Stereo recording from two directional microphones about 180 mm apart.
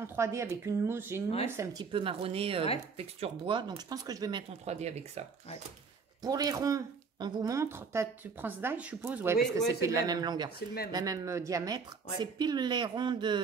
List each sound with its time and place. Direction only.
0.0 s a woman's voice: 15° right (ahead or behind); by 5.2 s 35° right (ahead or behind)
6.2 s a woman's voice: 20° right (ahead or behind)